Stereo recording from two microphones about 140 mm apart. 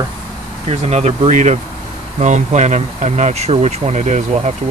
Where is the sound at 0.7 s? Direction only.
50° right (ahead or behind).